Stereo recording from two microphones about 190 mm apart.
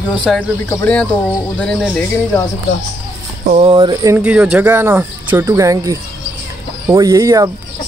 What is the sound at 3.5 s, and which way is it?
Speech, 30° right (ahead or behind).